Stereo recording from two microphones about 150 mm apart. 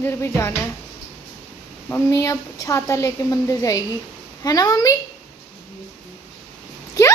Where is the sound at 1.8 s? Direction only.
20° left (ahead or behind).